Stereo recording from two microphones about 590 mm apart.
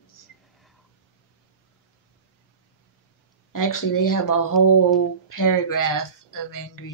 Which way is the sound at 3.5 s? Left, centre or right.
Left.